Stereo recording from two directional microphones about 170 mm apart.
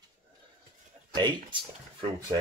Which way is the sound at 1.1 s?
25° right (ahead or behind).